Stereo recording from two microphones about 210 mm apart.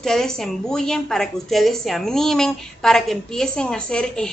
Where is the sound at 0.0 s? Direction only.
Centre (ahead or behind).